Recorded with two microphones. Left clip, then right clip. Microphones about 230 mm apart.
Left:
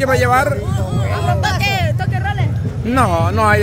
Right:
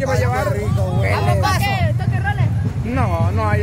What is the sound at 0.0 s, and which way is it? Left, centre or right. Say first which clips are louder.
Speech: left 6 dB; left.